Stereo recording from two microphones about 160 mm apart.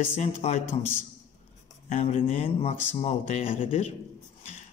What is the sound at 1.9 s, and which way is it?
Speech, 45° left (ahead or behind).